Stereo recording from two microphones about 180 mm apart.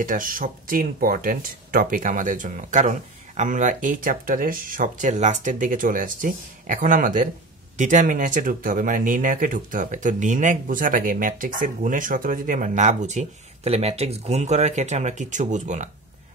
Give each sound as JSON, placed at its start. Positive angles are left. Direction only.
{"t": 0.0, "sound": "speech", "side_deg": -50}